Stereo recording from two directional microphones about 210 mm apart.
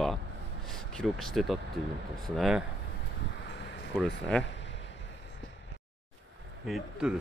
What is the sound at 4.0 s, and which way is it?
Speech, 5° left (ahead or behind).